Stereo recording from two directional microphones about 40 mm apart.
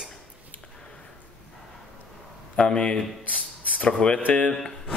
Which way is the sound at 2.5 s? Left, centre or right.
Left.